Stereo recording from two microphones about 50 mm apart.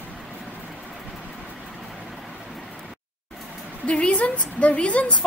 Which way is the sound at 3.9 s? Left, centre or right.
Left.